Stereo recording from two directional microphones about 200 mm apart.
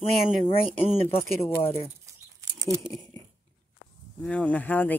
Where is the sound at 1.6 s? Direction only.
30° left (ahead or behind).